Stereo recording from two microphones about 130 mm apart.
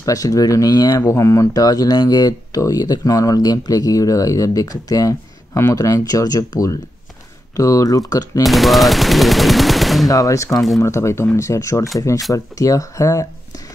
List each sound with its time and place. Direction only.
0.0 s speech: 25° left (ahead or behind)
8.5 s speech: centre (ahead or behind)
10.0 s speech: 25° left (ahead or behind)